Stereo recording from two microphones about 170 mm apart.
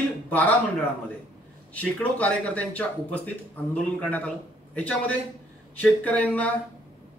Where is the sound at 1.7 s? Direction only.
10° left (ahead or behind).